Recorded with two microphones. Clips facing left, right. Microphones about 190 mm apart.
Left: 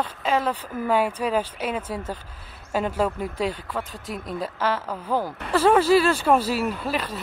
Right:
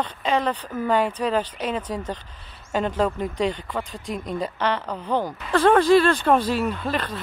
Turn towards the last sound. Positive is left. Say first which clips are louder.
# right 1 dB
turn(degrees=5)  # may be behind; listen again after turning